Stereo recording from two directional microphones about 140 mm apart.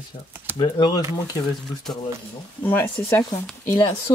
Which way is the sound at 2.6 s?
15° left (ahead or behind).